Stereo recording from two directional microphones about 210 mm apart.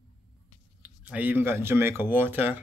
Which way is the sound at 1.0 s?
5° right (ahead or behind).